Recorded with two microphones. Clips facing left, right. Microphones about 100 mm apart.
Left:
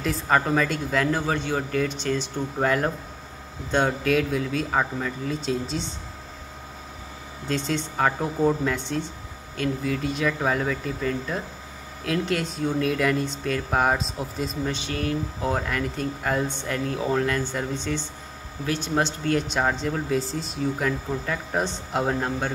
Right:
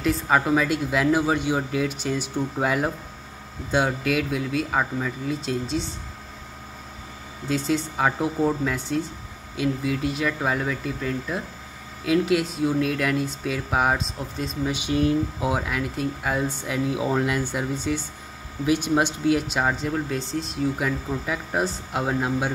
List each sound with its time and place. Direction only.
0.0 s speech: 5° right (ahead or behind)
7.4 s speech: 5° right (ahead or behind)
14.7 s speech: 15° right (ahead or behind)
15.5 s speech: 5° right (ahead or behind)